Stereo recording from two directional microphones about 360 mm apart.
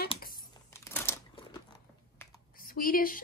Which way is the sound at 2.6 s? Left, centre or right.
Left.